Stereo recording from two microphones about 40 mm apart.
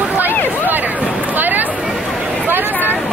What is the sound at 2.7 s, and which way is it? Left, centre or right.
Speech, left.